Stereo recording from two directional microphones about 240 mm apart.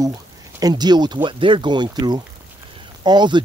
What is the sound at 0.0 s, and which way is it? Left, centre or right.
Speech, centre.